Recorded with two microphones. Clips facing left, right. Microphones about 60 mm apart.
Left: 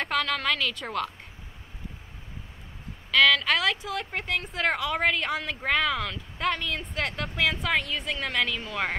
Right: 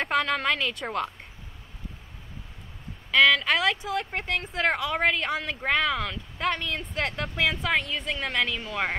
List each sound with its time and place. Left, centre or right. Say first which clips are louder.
0.0 s speech: right 2 dB; centre
3.1 s speech: right 1 dB; centre